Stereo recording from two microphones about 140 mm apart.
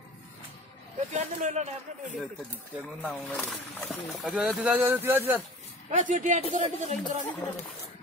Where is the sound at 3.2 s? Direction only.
5° left (ahead or behind); by 5.4 s 15° right (ahead or behind).